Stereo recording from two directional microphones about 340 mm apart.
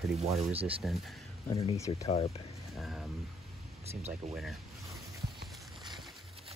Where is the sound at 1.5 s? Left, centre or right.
Centre.